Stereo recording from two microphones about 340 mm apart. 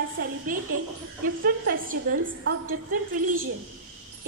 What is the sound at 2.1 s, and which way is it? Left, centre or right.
Speech, right.